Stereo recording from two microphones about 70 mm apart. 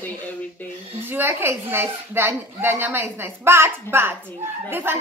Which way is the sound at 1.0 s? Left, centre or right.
Right.